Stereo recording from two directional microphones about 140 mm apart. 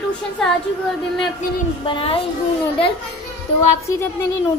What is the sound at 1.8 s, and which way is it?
Speech, 40° left (ahead or behind).